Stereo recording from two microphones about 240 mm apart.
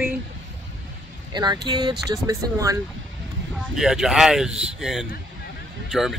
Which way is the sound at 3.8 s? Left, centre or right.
Centre.